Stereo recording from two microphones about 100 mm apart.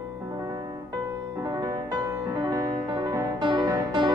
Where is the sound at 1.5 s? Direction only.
40° right (ahead or behind).